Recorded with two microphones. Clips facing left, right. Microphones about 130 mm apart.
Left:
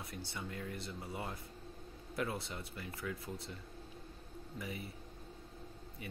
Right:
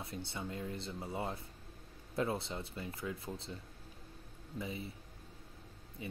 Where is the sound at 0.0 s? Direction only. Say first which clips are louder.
Right 2 dB; 25° right (ahead or behind).